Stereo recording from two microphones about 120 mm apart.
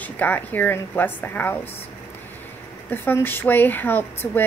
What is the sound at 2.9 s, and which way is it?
A woman's voice, 15° left (ahead or behind).